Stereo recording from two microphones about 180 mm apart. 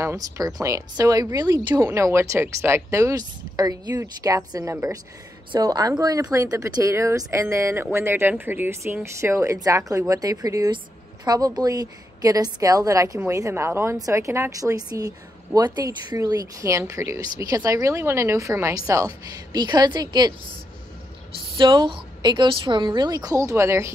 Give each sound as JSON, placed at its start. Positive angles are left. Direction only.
{"t": 0.0, "sound": "a woman's voice", "side_deg": -15}
{"t": 21.5, "sound": "a woman's voice", "side_deg": -25}